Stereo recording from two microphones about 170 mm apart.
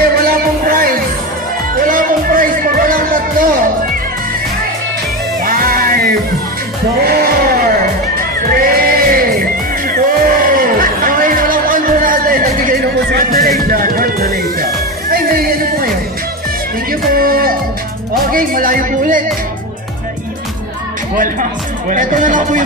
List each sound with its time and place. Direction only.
0.2 s music: 60° right (ahead or behind)
5.4 s music: 60° right (ahead or behind)
17.1 s music: 60° right (ahead or behind)
21.2 s speech: 50° right (ahead or behind)